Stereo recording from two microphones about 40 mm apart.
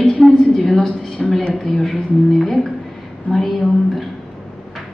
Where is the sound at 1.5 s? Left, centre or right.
Centre.